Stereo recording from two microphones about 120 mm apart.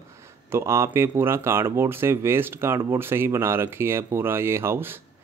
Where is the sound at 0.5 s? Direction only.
20° right (ahead or behind).